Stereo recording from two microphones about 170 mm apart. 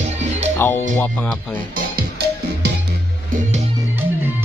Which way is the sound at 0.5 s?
10° left (ahead or behind).